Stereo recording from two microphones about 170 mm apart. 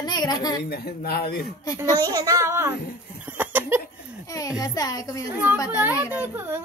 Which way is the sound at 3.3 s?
10° right (ahead or behind).